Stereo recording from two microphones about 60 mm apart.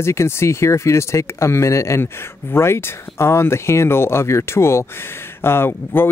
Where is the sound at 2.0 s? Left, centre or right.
Left.